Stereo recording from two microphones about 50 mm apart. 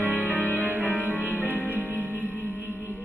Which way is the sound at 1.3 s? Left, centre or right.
Left.